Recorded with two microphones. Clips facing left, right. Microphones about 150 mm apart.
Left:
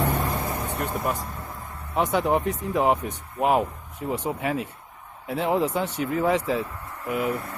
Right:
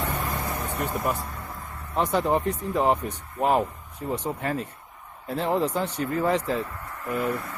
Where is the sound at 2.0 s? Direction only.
Centre (ahead or behind).